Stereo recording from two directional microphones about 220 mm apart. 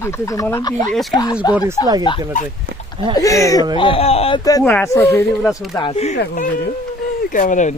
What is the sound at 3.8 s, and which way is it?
Speech, 25° left (ahead or behind).